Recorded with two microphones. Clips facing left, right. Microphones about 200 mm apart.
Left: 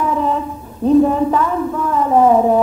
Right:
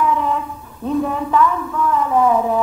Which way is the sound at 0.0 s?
35° left (ahead or behind).